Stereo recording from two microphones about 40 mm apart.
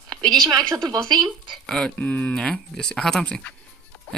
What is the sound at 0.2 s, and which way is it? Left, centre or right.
Speech, centre.